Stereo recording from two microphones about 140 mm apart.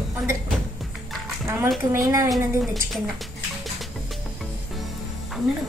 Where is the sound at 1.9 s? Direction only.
25° right (ahead or behind).